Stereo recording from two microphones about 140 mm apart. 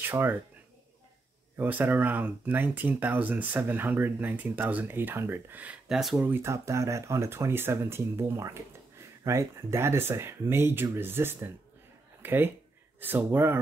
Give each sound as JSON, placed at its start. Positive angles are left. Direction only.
{"t": 0.0, "sound": "speech", "side_deg": -15}
{"t": 1.6, "sound": "speech", "side_deg": -10}
{"t": 6.2, "sound": "speech", "side_deg": -15}